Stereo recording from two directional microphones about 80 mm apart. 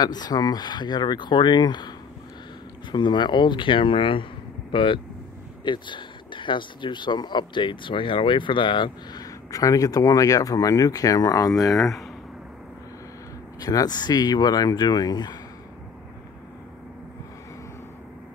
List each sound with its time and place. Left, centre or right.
0.0 s speech: left
5.6 s speech: left
9.2 s speech: left
11.7 s speech: centre
13.6 s speech: left